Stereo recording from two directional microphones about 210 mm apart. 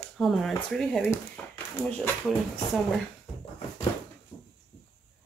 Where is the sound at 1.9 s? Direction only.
Centre (ahead or behind).